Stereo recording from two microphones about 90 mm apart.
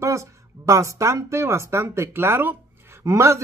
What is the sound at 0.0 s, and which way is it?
Speech, 35° right (ahead or behind).